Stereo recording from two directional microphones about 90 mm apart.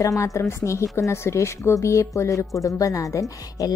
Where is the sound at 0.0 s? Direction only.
35° left (ahead or behind).